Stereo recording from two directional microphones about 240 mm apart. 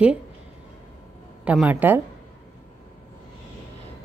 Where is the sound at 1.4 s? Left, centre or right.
Centre.